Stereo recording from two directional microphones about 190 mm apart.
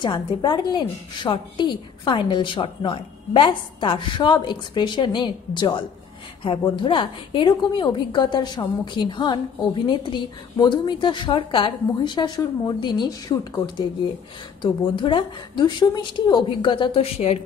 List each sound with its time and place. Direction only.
0.0 s a woman's voice: 25° left (ahead or behind)